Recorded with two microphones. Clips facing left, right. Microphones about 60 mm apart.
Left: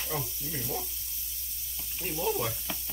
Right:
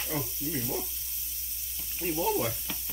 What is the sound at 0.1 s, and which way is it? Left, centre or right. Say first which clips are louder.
Speech: right 1 dB; right.